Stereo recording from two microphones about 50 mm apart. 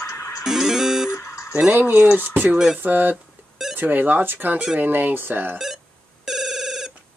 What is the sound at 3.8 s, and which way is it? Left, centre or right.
Speech, right.